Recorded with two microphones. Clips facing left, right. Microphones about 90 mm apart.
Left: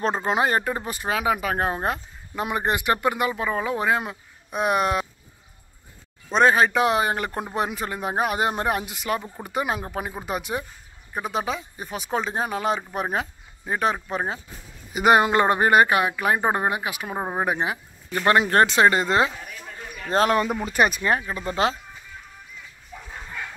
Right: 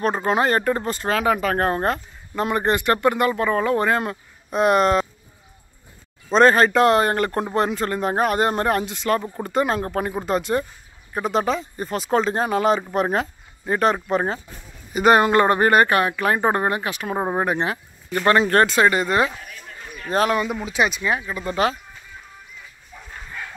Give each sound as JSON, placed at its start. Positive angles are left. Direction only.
{"t": 0.0, "sound": "speech", "side_deg": 20}
{"t": 6.3, "sound": "speech", "side_deg": 5}
{"t": 15.0, "sound": "speech", "side_deg": 15}
{"t": 18.2, "sound": "speech", "side_deg": 20}
{"t": 20.7, "sound": "speech", "side_deg": 45}
{"t": 21.4, "sound": "speech", "side_deg": 25}